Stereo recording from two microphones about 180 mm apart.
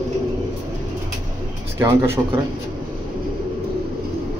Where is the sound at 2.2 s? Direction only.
20° right (ahead or behind).